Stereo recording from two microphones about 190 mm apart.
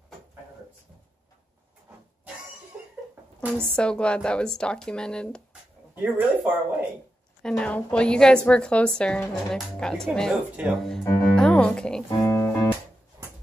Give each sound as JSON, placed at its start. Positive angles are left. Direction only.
{"t": 3.3, "sound": "a woman's voice", "side_deg": 5}
{"t": 5.9, "sound": "speech", "side_deg": -10}
{"t": 7.4, "sound": "a woman's voice", "side_deg": 5}
{"t": 12.2, "sound": "speech", "side_deg": 15}